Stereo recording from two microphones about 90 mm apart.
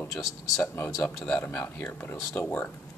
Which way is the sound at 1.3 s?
20° left (ahead or behind).